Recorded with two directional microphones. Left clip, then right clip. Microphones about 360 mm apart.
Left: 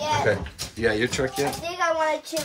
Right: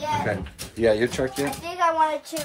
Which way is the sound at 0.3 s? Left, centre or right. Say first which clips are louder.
Left 4 dB; centre.